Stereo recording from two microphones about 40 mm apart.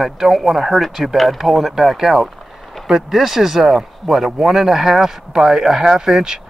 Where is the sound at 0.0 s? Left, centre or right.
Centre.